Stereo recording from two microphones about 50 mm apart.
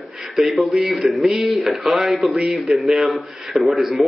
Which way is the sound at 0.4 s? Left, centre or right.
Centre.